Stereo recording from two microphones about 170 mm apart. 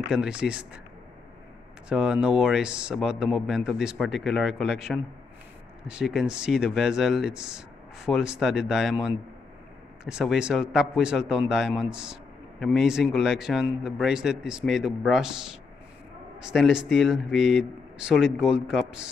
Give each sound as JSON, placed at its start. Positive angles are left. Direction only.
{"t": 0.1, "sound": "a man's voice", "side_deg": -5}
{"t": 1.9, "sound": "a man's voice", "side_deg": -5}
{"t": 16.5, "sound": "a man's voice", "side_deg": 0}